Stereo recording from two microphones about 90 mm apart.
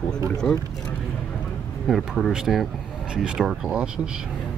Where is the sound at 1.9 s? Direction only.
5° right (ahead or behind).